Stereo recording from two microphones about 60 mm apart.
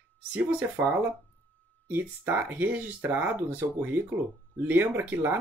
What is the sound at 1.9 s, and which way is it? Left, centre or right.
Speech, right.